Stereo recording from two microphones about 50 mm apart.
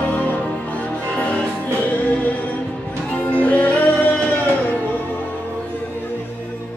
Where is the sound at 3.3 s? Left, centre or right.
Left.